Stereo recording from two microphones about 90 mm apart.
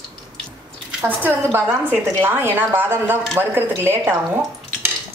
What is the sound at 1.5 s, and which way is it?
A woman's voice, 20° right (ahead or behind).